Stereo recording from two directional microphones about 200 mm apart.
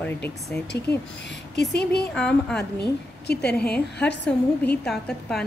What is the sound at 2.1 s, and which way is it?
Speech, 5° left (ahead or behind).